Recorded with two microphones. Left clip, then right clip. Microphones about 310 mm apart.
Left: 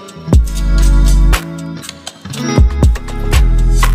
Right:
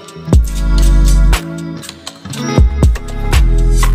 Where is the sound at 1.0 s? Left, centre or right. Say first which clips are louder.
Left 3 dB; centre.